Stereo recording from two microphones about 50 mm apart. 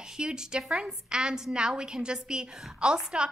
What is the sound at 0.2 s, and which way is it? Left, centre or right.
A woman's voice, centre.